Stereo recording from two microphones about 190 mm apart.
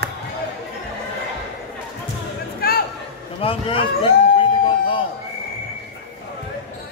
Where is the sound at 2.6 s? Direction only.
50° left (ahead or behind).